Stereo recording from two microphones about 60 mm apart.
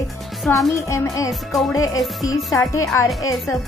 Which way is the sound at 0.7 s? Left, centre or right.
Left.